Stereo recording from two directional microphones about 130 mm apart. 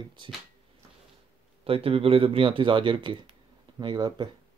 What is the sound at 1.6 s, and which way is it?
Speech, 45° right (ahead or behind).